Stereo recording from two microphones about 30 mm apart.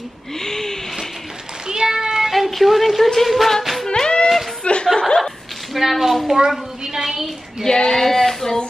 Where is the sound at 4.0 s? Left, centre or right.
Left.